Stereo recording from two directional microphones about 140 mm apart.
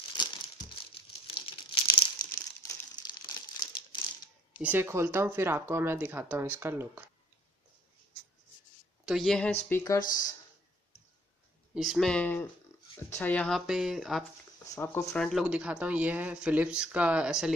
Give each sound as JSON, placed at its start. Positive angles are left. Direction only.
{"t": 0.2, "sound": "crumpling", "side_deg": 30}
{"t": 4.6, "sound": "speech", "side_deg": -15}
{"t": 9.0, "sound": "a woman's voice", "side_deg": 0}
{"t": 11.7, "sound": "speech", "side_deg": 0}
{"t": 14.6, "sound": "speech", "side_deg": 25}
{"t": 15.1, "sound": "speech", "side_deg": 0}
{"t": 15.4, "sound": "speech", "side_deg": -10}